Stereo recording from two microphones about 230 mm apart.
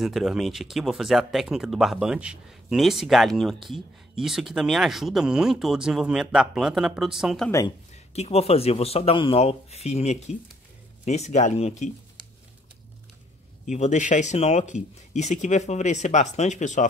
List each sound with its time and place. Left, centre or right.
0.0 s speech: centre
7.9 s speech: left
13.7 s speech: left